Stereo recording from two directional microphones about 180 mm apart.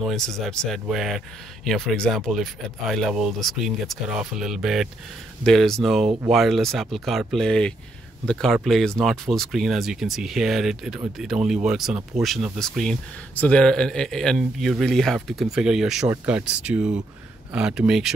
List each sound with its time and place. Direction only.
0.0 s speech: centre (ahead or behind)